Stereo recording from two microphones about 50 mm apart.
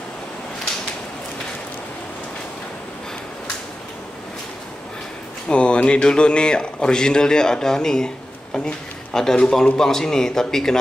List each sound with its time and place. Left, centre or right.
5.5 s a man's voice: left